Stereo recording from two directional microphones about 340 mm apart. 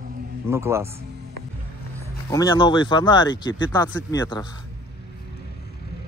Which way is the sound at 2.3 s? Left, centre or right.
Centre.